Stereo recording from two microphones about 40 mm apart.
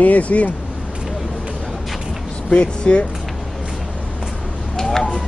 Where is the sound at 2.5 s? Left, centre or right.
Left.